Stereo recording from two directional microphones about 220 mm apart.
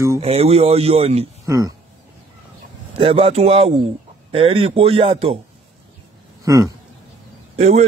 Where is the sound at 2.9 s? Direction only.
25° right (ahead or behind).